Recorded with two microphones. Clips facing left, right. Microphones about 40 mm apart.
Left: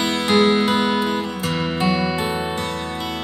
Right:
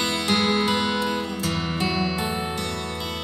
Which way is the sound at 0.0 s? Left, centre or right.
Centre.